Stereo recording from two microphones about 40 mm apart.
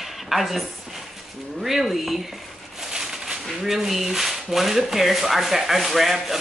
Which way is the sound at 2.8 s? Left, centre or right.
Centre.